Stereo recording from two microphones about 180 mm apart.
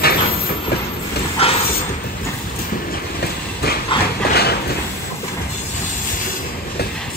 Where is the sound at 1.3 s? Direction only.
30° left (ahead or behind).